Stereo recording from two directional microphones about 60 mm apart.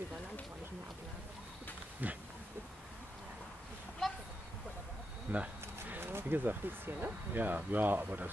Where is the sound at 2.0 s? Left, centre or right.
Right.